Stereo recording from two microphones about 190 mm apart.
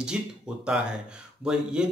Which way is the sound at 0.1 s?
5° right (ahead or behind).